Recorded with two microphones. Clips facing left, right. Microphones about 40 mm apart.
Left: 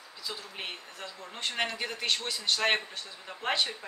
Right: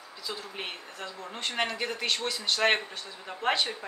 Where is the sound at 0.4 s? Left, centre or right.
Centre.